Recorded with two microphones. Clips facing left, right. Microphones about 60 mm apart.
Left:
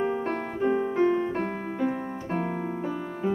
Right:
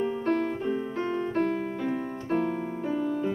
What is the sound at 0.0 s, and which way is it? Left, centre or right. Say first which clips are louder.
Music: right 1 dB; left.